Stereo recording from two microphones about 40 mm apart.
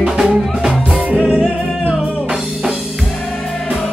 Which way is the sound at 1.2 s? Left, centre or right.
Left.